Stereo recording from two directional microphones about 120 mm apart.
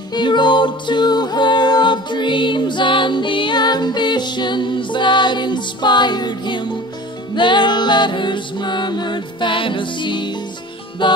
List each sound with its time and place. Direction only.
0.1 s music: 40° left (ahead or behind)